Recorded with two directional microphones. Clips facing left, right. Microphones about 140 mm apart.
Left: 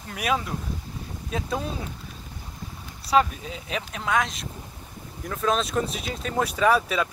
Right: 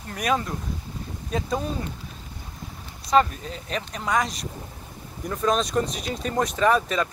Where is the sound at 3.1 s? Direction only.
5° left (ahead or behind).